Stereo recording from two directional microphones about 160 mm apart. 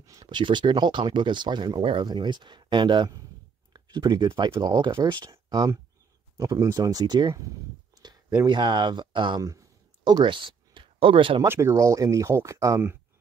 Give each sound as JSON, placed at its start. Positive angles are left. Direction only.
{"t": 0.0, "sound": "speech", "side_deg": -25}
{"t": 7.9, "sound": "a sound", "side_deg": -25}
{"t": 8.5, "sound": "speech", "side_deg": -30}
{"t": 11.4, "sound": "speech", "side_deg": -15}